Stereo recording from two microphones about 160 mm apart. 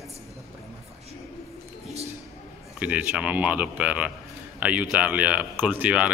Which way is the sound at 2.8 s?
10° right (ahead or behind).